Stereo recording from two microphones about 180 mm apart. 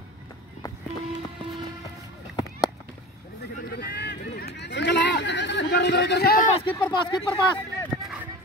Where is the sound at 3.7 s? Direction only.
65° left (ahead or behind).